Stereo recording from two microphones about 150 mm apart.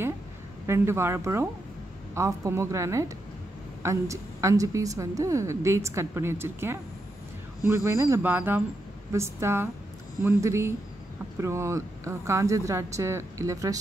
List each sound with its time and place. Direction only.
0.7 s a woman's voice: 15° right (ahead or behind)